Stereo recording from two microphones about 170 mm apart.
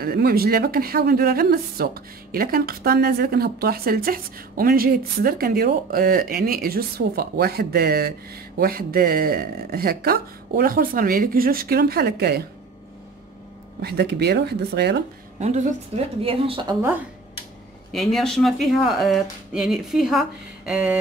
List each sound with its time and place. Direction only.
0.0 s speech: 65° right (ahead or behind)
13.7 s speech: 70° right (ahead or behind)
15.3 s a woman's voice: 45° right (ahead or behind)
16.2 s a woman's voice: 35° right (ahead or behind)
17.9 s speech: centre (ahead or behind)